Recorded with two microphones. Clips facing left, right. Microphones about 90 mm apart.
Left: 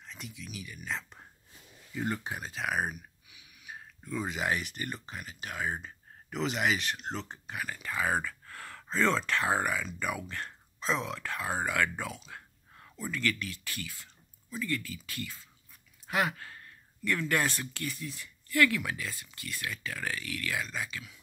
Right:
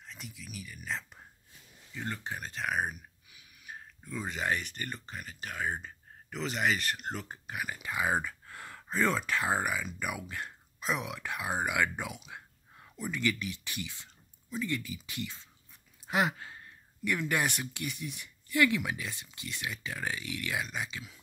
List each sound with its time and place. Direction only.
0.0 s speech: centre (ahead or behind)
1.9 s speech: 10° left (ahead or behind); by 21.2 s 20° right (ahead or behind)